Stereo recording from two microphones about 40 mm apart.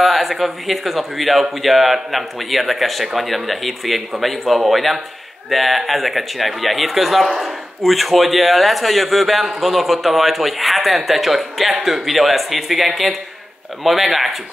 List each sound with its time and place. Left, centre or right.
0.0 s speech: centre